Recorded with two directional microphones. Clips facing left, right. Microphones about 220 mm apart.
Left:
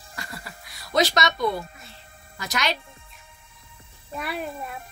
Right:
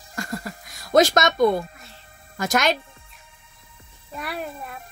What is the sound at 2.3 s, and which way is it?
Speech, 50° right (ahead or behind).